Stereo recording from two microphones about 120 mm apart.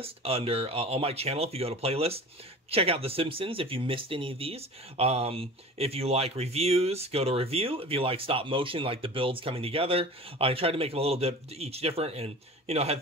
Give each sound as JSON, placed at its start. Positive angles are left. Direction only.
{"t": 0.0, "sound": "speech", "side_deg": -55}